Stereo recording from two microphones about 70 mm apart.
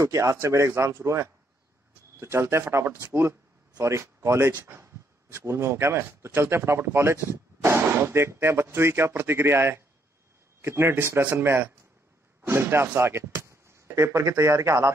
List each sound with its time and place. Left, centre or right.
0.0 s speech: right
4.5 s speech: right
4.7 s speech: right